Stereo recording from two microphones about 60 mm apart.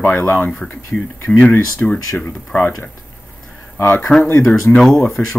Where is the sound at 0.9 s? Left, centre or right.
Centre.